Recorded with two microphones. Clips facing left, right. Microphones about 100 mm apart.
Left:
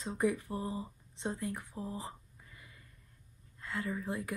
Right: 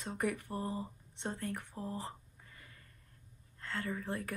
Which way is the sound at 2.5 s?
15° left (ahead or behind).